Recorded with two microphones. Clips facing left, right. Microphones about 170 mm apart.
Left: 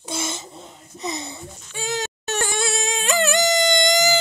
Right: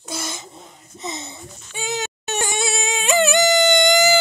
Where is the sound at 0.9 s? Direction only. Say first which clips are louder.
Left 2 dB; 25° right (ahead or behind).